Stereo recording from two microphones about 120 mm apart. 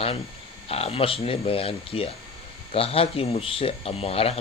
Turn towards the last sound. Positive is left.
turn(degrees=55)  # may be behind; listen again after turning